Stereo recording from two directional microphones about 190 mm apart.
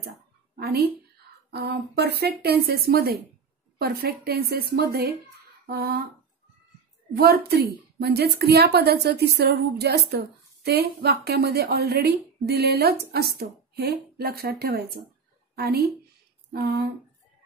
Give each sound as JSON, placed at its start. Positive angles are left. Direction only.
{"t": 0.6, "sound": "a woman's voice", "side_deg": -55}
{"t": 7.2, "sound": "a woman's voice", "side_deg": -55}